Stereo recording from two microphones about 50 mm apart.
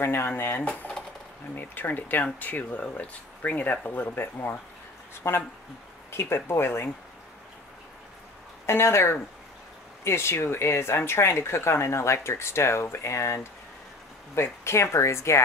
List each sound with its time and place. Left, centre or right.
0.0 s speech: left
8.6 s speech: left